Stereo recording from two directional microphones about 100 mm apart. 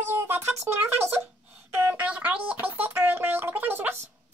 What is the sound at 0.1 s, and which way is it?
Speech, 20° right (ahead or behind).